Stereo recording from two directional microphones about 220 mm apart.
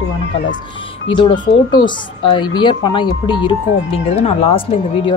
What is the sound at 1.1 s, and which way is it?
Speech, 20° left (ahead or behind).